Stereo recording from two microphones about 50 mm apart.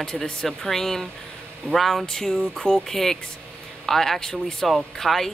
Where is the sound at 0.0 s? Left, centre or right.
Centre.